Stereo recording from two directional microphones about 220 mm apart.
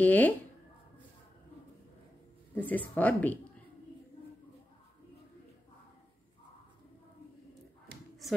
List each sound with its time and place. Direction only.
0.0 s speech: 10° left (ahead or behind)
2.5 s speech: 5° left (ahead or behind)
7.9 s a sound: 50° right (ahead or behind)